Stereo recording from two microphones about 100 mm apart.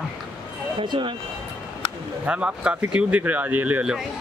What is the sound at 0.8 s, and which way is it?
Speech, 55° right (ahead or behind).